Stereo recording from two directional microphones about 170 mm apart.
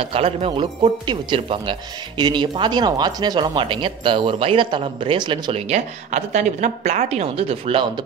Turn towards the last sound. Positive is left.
turn(degrees=-35)  # may be behind; listen again after turning